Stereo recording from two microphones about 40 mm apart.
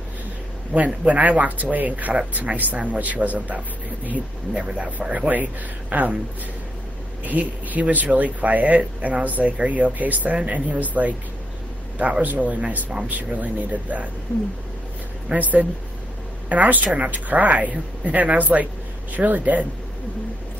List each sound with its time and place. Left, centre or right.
0.7 s speech: right
4.6 s speech: right
5.3 s speech: right
7.2 s speech: right
12.2 s speech: right
15.3 s speech: right